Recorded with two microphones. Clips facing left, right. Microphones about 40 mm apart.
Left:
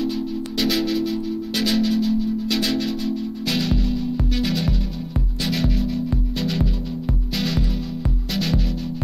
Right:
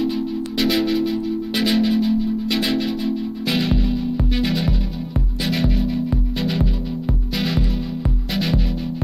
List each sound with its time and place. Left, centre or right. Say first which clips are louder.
0.6 s music: right 2 dB; centre